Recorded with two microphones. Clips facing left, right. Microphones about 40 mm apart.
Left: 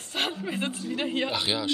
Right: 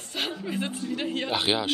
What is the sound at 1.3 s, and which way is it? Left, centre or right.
Speech, right.